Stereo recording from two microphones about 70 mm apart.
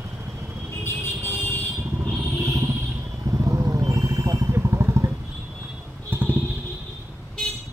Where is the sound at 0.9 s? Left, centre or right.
Left.